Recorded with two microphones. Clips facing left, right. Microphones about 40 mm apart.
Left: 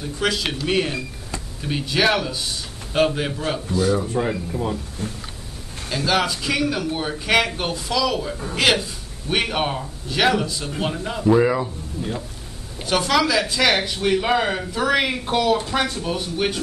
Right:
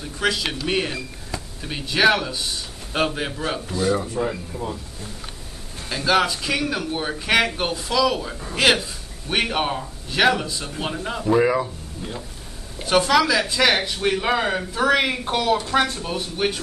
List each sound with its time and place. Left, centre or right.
0.0 s a man's voice: centre
5.0 s a sound: left
5.9 s a man's voice: centre
12.8 s a man's voice: centre